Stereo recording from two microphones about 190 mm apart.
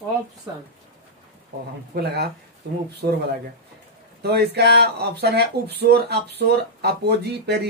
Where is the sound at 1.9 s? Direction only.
55° right (ahead or behind).